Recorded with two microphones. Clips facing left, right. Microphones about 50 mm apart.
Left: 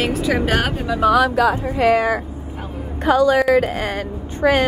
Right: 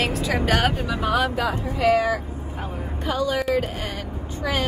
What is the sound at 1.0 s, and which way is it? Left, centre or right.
Speech, left.